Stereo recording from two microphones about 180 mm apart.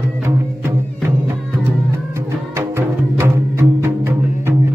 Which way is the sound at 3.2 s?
15° right (ahead or behind).